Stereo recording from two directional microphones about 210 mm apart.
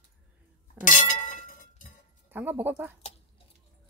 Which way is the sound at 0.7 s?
35° left (ahead or behind).